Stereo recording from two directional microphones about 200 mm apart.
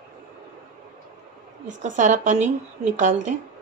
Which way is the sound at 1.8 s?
40° right (ahead or behind).